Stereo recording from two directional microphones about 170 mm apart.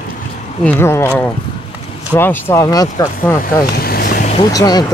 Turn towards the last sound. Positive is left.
turn(degrees=25)  # may be behind; listen again after turning